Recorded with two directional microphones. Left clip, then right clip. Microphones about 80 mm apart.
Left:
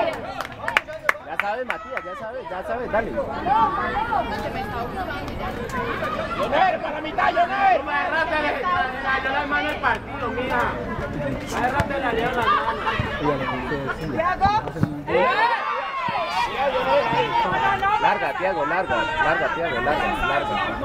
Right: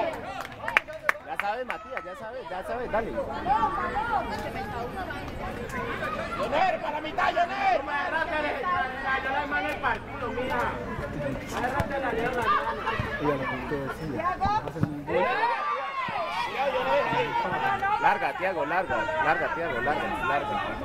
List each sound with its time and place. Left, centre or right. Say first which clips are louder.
0.7 s a sound: left 3 dB; left
2.9 s speech: left 5 dB; right
6.4 s speech: left 5 dB; right
8.1 s speech: left 6 dB; left
11.5 s speech: left 6 dB; left
14.1 s speech: left 7 dB; left
15.0 s a sound: left 6 dB; left
16.9 s a sound: left 7 dB; left
17.6 s chatter: left 6 dB; left
18.0 s speech: left 4 dB; right
18.9 s speech: left 4 dB; left